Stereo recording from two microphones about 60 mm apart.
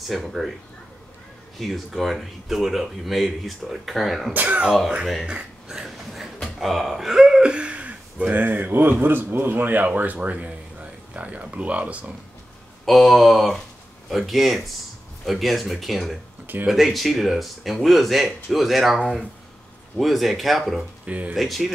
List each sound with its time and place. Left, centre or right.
0.1 s speech: centre
1.6 s speech: centre
4.3 s speech: right
5.7 s a sound: centre
6.4 s speech: centre; by 12.1 s right
12.8 s speech: centre
20.0 s speech: centre
21.0 s speech: right
21.4 s speech: centre